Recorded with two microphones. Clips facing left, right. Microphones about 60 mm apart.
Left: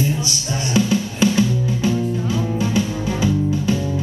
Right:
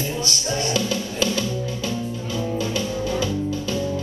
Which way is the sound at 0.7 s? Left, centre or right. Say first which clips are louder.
Left 5 dB; left.